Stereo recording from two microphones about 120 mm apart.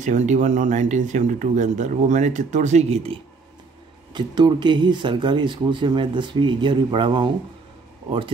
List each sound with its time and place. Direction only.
0.0 s speech: 85° right; by 3.2 s 60° right (ahead or behind)
4.1 s speech: 40° right (ahead or behind)